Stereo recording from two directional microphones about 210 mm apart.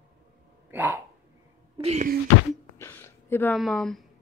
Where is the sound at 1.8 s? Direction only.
30° right (ahead or behind).